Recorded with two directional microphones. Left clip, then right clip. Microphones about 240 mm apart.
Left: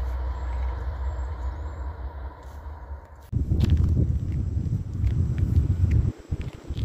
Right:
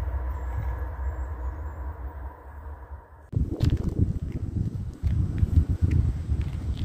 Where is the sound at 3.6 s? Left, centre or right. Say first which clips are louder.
Left 2 dB; centre.